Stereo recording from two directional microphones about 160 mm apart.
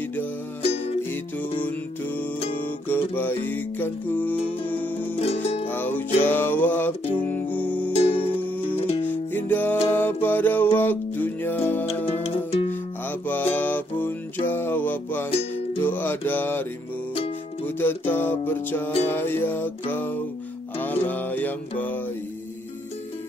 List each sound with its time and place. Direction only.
0.6 s music: 40° left (ahead or behind)
1.6 s music: 10° left (ahead or behind)
5.1 s music: 40° left (ahead or behind)
5.7 s music: 10° left (ahead or behind)
7.9 s music: 35° left (ahead or behind)
9.0 s music: 10° left (ahead or behind)
12.1 s music: 40° left (ahead or behind)
13.3 s music: 10° left (ahead or behind)
15.8 s mantra: 10° left (ahead or behind)
17.6 s music: 10° left (ahead or behind)